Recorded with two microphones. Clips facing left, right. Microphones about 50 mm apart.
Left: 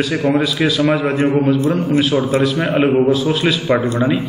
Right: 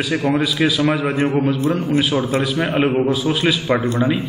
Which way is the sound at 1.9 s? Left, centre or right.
Centre.